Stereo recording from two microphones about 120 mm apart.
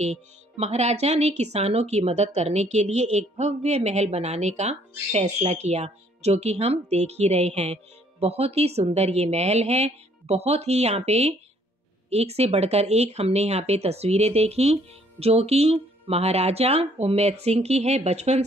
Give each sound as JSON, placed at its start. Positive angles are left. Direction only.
{"t": 0.0, "sound": "speech", "side_deg": -65}